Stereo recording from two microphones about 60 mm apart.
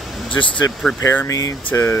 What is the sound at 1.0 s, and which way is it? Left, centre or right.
Speech, left.